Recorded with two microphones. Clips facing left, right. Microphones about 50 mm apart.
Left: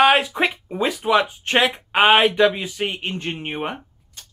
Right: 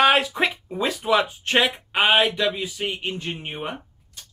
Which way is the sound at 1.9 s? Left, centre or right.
Left.